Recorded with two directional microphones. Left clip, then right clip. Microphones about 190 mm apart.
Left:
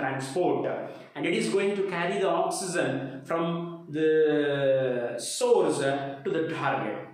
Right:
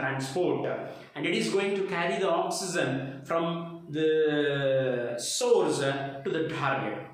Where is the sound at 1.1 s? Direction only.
Centre (ahead or behind).